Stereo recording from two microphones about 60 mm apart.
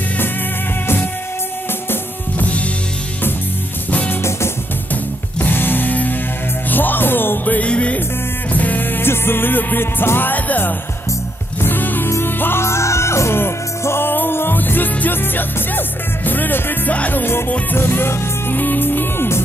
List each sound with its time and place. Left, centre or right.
1.9 s music: left
5.4 s music: left